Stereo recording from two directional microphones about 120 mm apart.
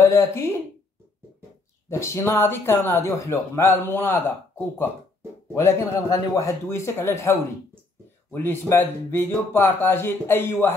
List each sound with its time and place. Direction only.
0.0 s speech: 20° left (ahead or behind)
1.9 s speech: 20° left (ahead or behind)